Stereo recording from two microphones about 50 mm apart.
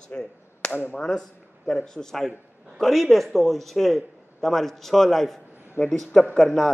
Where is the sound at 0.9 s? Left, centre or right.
Centre.